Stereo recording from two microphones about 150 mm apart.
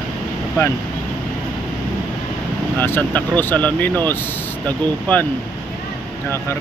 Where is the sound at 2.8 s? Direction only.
10° left (ahead or behind).